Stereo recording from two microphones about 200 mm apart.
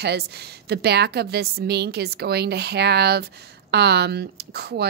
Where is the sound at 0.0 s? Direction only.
55° right (ahead or behind).